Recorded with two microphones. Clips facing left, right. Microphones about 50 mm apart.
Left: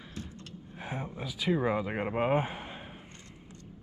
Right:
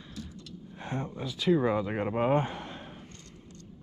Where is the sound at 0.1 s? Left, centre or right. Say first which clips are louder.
Right 1 dB; left.